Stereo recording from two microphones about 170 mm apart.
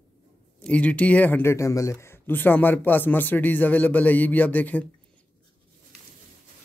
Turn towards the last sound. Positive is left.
turn(degrees=10)  # may be behind; listen again after turning